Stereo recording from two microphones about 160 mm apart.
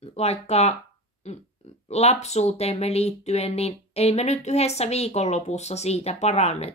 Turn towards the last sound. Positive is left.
turn(degrees=40)  # may be behind; listen again after turning